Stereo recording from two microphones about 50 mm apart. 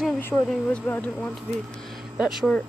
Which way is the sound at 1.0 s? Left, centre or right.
Left.